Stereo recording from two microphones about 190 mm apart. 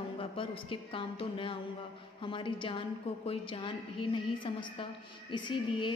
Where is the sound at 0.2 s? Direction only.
30° left (ahead or behind).